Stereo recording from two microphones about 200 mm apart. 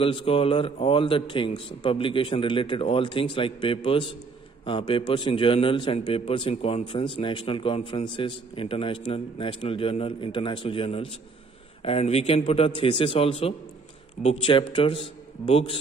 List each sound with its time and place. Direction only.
0.0 s a man's voice: 25° left (ahead or behind)